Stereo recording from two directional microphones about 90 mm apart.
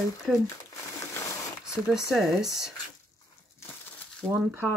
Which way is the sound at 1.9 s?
5° right (ahead or behind).